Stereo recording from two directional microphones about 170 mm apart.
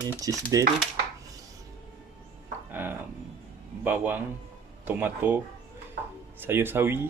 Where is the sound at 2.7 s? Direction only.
10° right (ahead or behind).